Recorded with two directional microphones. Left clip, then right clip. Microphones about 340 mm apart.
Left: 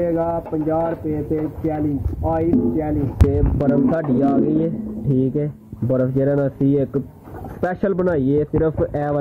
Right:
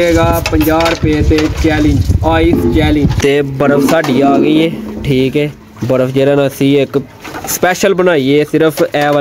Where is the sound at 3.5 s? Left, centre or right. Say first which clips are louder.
Right 9 dB; right.